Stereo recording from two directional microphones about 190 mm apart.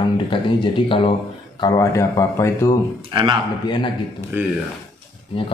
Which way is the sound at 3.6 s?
25° left (ahead or behind).